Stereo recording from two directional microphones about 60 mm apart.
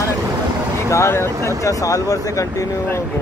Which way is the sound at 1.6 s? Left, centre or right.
Left.